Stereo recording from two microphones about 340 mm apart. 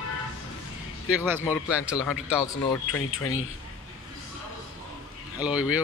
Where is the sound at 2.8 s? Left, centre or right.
Left.